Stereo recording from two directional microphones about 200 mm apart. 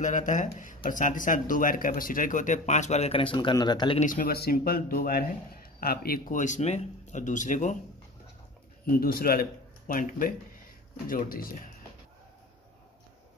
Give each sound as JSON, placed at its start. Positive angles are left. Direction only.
{"t": 0.0, "sound": "speech", "side_deg": 40}
{"t": 4.0, "sound": "a man's voice", "side_deg": 40}
{"t": 8.8, "sound": "a man's voice", "side_deg": 50}